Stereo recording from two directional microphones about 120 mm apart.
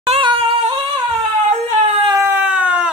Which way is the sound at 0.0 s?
50° right (ahead or behind).